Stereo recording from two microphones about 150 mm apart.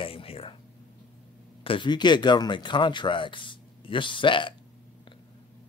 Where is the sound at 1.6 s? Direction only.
35° left (ahead or behind).